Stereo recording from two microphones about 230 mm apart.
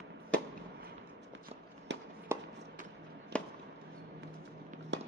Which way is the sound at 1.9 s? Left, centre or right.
Right.